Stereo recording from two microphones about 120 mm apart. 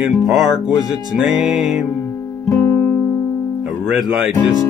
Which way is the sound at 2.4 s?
25° left (ahead or behind).